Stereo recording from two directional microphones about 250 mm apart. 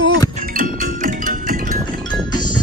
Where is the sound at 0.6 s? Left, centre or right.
Right.